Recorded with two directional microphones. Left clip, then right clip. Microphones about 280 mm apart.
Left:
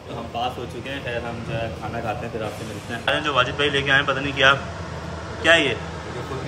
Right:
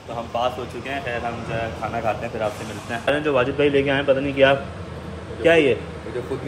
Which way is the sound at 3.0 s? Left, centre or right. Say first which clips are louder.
Even; centre.